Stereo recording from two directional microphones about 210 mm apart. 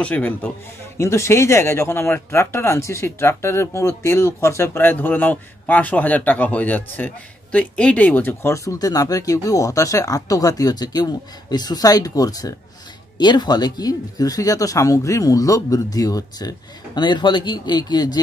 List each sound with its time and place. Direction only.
0.0 s speech: 5° left (ahead or behind)